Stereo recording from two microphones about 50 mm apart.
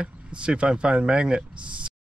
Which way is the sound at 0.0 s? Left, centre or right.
Centre.